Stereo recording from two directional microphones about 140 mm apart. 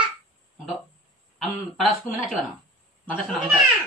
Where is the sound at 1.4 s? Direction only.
Centre (ahead or behind).